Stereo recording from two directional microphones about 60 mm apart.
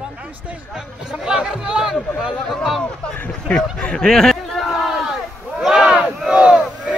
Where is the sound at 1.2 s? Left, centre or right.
Centre.